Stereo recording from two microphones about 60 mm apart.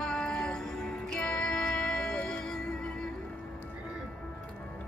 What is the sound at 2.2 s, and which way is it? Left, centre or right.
Music, centre.